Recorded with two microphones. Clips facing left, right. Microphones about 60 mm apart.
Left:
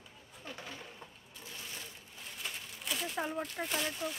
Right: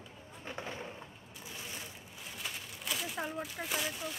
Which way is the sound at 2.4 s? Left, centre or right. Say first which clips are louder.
Even; centre.